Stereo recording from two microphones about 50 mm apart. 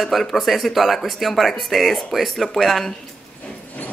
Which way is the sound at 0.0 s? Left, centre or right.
Centre.